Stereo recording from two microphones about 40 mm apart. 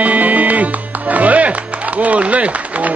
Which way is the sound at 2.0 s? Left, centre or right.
Right.